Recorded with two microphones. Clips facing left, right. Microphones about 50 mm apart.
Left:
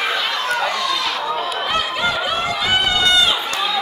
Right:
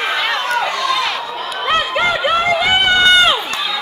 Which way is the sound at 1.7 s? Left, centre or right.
Right.